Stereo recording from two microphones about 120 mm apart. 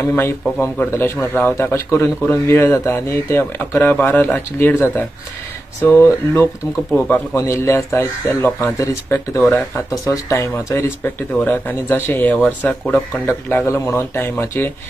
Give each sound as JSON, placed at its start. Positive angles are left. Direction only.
{"t": 0.1, "sound": "a man's voice", "side_deg": 15}